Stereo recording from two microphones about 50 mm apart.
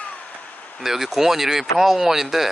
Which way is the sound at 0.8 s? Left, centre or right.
Centre.